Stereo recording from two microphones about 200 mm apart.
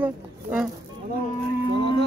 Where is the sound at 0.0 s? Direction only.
5° right (ahead or behind).